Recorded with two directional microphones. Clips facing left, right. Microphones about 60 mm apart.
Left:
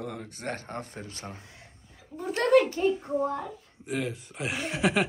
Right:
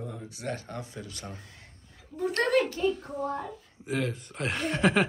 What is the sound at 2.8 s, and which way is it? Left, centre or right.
Child singing, left.